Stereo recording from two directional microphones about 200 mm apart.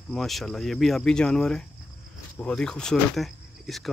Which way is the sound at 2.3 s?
5° left (ahead or behind).